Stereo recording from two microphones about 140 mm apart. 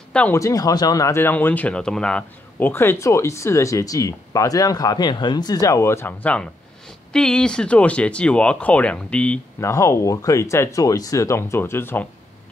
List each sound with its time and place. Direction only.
0.1 s speech: 10° left (ahead or behind)
0.4 s speech: 25° left (ahead or behind); by 9.4 s 10° left (ahead or behind)
9.6 s speech: 20° left (ahead or behind)